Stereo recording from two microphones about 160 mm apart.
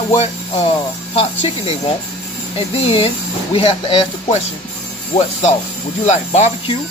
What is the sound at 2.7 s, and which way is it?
Speech, 35° left (ahead or behind).